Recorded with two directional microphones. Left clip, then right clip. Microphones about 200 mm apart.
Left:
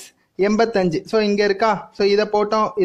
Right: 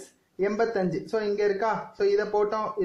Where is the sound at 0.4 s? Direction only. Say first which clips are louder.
Left 8 dB; 45° left (ahead or behind).